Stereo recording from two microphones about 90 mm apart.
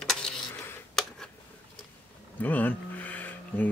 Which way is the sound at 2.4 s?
20° left (ahead or behind).